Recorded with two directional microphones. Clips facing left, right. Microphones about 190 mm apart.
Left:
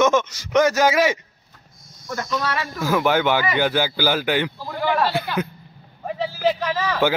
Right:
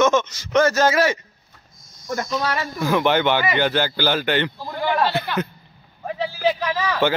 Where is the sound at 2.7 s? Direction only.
Centre (ahead or behind).